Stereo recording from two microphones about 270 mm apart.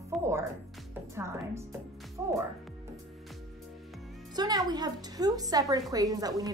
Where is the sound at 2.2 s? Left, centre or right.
Centre.